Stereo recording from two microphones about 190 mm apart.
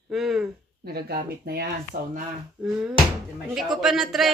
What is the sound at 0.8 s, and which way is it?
Speech, 55° right (ahead or behind).